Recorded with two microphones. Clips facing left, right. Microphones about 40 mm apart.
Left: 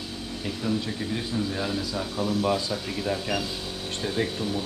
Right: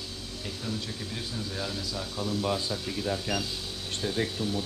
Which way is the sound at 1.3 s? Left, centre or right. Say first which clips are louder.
Left 7 dB; left.